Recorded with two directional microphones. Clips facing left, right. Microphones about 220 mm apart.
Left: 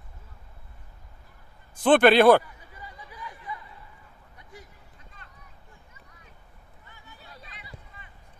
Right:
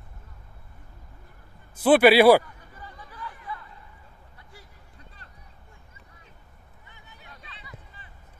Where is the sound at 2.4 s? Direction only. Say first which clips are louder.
Even; 10° left (ahead or behind).